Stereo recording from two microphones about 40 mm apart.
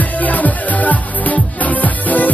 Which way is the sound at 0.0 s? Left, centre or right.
Left.